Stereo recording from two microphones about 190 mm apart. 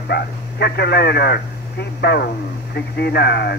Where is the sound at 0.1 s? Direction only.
60° left (ahead or behind).